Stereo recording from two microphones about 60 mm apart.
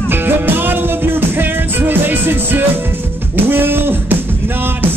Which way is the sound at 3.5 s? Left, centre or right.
Right.